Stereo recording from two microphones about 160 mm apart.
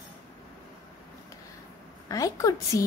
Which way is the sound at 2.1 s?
20° left (ahead or behind).